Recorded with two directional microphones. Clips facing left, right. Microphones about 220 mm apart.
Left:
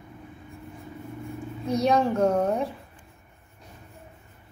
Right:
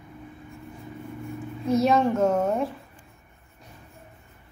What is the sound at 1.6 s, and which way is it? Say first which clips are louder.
A woman's voice: right 2 dB; centre (ahead or behind).